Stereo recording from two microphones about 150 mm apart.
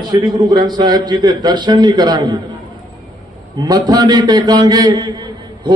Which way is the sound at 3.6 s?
25° right (ahead or behind).